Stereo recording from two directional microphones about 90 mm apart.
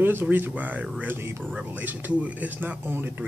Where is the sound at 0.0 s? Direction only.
20° right (ahead or behind).